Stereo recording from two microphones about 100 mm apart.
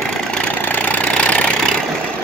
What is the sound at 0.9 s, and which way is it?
Engine, 15° left (ahead or behind).